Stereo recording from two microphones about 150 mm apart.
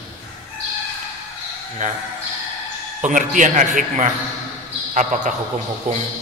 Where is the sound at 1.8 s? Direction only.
55° right (ahead or behind).